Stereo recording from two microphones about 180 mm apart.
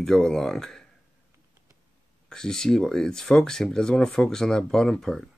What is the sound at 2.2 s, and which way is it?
Speech, 5° left (ahead or behind).